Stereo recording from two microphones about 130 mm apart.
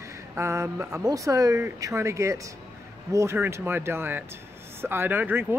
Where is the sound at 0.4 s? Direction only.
20° right (ahead or behind).